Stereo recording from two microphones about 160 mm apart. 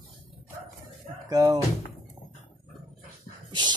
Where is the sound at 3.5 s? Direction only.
30° right (ahead or behind).